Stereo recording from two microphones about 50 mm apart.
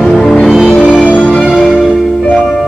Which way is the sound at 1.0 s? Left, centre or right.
Left.